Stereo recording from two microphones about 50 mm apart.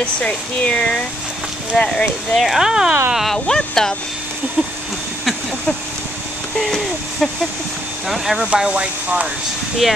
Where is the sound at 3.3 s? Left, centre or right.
Centre.